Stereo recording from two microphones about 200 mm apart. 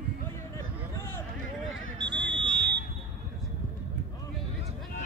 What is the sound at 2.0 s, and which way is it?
Fire alarm, 60° right (ahead or behind).